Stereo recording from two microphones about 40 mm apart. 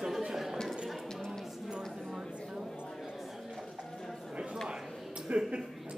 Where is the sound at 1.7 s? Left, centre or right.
Centre.